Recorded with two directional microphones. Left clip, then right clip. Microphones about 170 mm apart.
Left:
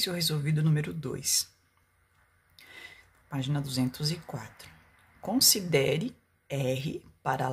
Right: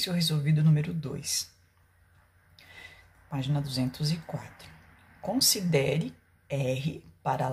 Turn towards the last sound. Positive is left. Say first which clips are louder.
# right 1 dB
turn(degrees=30)  # may be behind; listen again after turning